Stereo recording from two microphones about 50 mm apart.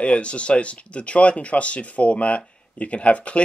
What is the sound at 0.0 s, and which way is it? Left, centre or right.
Speech, left.